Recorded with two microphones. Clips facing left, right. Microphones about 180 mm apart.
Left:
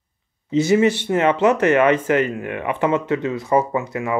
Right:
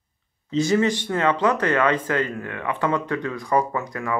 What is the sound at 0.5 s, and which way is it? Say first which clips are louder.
Speech: left 4 dB; 20° left (ahead or behind).